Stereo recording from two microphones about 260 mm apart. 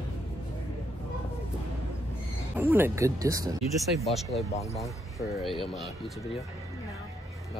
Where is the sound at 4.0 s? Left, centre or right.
Centre.